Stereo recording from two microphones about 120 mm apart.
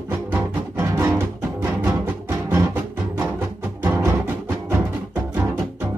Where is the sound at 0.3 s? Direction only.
15° right (ahead or behind).